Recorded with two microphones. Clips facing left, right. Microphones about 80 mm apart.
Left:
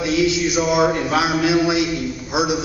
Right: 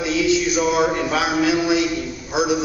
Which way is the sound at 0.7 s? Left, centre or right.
Centre.